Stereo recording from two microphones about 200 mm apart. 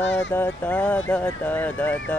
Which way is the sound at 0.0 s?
65° left (ahead or behind).